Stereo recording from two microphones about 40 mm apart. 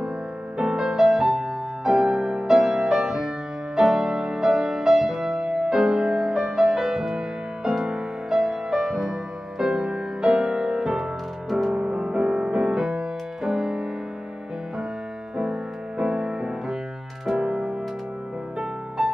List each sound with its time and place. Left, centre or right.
0.6 s music: centre
16.0 s music: right